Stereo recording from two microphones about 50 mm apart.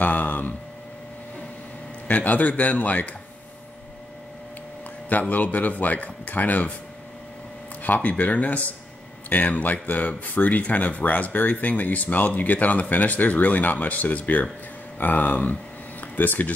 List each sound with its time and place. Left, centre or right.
0.0 s speech: left
2.0 s speech: left
5.3 s speech: left
7.8 s speech: left